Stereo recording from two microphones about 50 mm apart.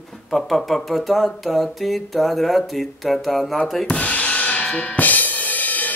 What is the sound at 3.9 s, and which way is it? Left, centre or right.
Drum kit, left.